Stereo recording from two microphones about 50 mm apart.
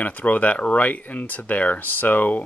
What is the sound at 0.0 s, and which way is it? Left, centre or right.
Speech, left.